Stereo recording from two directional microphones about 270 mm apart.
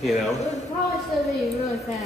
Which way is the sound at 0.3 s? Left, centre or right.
Left.